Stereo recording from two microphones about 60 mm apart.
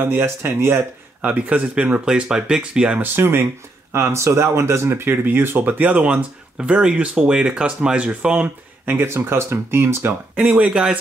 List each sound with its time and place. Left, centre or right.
0.0 s speech: right
1.2 s speech: right
3.0 s speech: right
3.9 s speech: right; by 8.5 s centre
8.8 s speech: right
10.3 s speech: right